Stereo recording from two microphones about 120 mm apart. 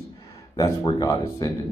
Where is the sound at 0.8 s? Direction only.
30° left (ahead or behind).